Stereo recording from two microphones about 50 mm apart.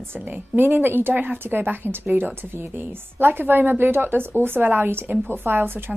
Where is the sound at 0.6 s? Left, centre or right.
Right.